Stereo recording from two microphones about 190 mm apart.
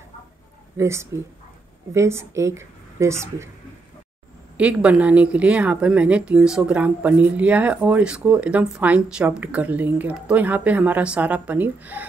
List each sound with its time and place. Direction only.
0.7 s speech: 15° right (ahead or behind)
4.6 s speech: 5° right (ahead or behind)